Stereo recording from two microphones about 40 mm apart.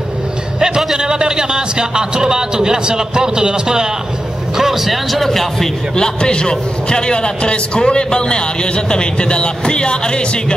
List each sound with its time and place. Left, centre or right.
0.6 s a sound: centre
0.9 s a man's voice: centre
5.1 s speech: centre
5.9 s a man's voice: centre